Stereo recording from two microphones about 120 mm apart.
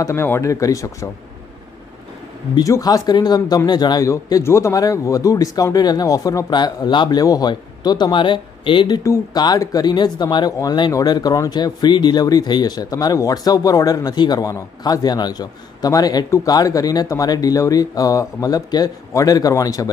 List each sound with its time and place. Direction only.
0.0 s speech: 20° left (ahead or behind)
2.5 s speech: 30° left (ahead or behind)
4.1 s speech: 25° left (ahead or behind); by 9.0 s 40° left (ahead or behind)
9.0 s speech: 30° left (ahead or behind)